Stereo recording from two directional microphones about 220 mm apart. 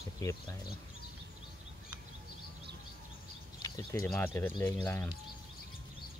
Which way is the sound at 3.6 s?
15° left (ahead or behind).